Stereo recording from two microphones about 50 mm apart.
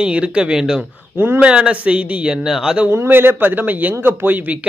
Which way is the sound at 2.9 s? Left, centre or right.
Right.